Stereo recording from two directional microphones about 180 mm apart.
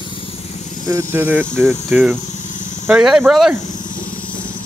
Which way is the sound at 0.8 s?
15° right (ahead or behind).